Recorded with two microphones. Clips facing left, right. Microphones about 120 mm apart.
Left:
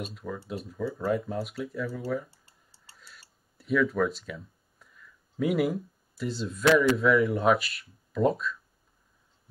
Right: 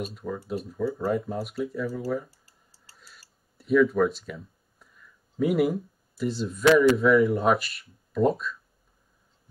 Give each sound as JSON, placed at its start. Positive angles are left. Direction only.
{"t": 0.0, "sound": "speech", "side_deg": 0}
{"t": 2.3, "sound": "typing", "side_deg": 25}
{"t": 3.0, "sound": "tick-tock", "side_deg": 0}
{"t": 5.4, "sound": "speech", "side_deg": 0}